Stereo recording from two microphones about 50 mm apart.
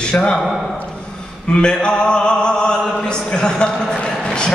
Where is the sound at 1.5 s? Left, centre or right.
Centre.